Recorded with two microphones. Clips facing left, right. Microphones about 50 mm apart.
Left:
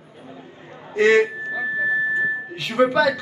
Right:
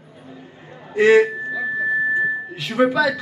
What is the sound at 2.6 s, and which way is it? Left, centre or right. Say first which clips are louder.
Speech: even; centre.